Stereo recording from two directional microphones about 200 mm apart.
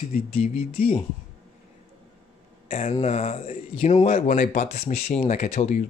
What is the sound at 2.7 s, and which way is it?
Speech, 30° left (ahead or behind).